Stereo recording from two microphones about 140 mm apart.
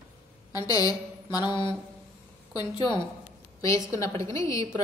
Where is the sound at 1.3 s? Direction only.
30° left (ahead or behind).